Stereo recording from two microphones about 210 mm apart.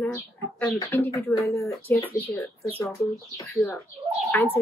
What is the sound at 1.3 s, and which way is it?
Speech, 15° left (ahead or behind).